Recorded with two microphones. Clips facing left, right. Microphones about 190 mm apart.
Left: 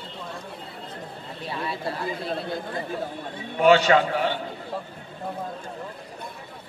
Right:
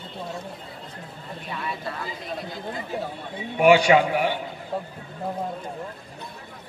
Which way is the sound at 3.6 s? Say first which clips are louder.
Right 1 dB; 15° right (ahead or behind).